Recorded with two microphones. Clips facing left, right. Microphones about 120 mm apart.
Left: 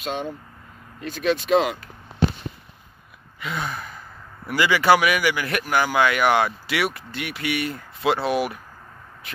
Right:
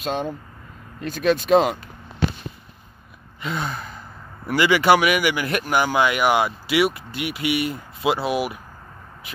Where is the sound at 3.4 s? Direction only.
25° right (ahead or behind).